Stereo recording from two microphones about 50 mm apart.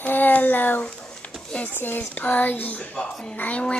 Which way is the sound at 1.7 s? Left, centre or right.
Left.